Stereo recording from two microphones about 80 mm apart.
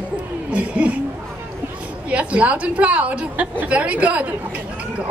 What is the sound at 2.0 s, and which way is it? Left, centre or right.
A woman's voice, centre.